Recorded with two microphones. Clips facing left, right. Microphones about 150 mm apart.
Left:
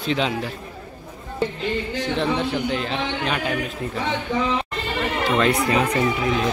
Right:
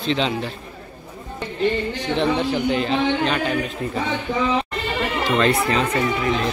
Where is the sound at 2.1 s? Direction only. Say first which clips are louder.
Right 3 dB; centre (ahead or behind).